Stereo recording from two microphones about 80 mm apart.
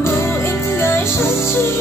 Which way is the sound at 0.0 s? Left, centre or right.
Left.